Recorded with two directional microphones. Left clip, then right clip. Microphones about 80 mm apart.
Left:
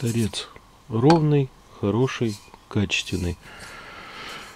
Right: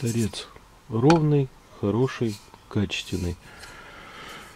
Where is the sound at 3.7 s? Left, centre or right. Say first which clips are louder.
Left 5 dB; left.